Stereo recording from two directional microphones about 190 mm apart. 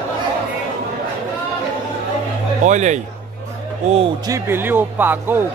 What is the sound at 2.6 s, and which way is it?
Speech, 40° right (ahead or behind).